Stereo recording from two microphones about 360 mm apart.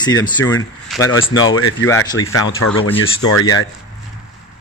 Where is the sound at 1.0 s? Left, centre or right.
Left.